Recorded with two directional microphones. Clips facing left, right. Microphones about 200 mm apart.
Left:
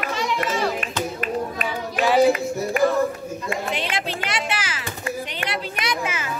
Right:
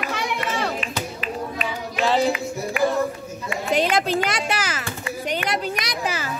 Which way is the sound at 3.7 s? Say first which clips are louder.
Right 7 dB; 45° right (ahead or behind).